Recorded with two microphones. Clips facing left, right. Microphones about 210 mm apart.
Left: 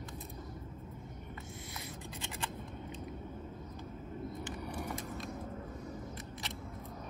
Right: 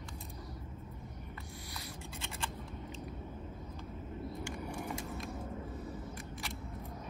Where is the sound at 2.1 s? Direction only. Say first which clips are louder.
Even; 15° left (ahead or behind).